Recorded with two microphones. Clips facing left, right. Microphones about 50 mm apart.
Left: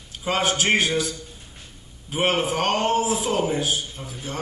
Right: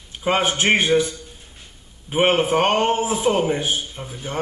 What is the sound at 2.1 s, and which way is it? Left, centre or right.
Speech, right.